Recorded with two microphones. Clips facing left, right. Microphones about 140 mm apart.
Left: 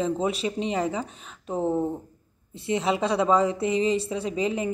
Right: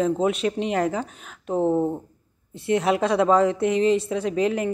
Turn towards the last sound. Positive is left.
turn(degrees=0)  # may be behind; listen again after turning